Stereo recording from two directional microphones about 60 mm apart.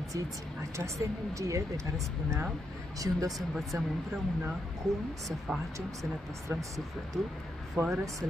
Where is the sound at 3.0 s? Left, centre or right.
Right.